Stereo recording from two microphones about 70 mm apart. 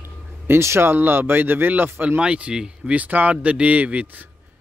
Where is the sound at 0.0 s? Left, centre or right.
Right; by 3.0 s centre.